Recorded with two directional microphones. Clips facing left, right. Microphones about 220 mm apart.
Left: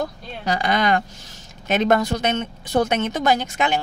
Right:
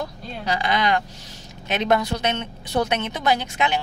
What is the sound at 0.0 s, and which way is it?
A woman's voice, 45° left (ahead or behind).